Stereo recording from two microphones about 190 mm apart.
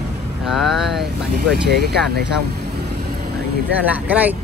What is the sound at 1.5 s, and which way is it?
Speech, 60° right (ahead or behind).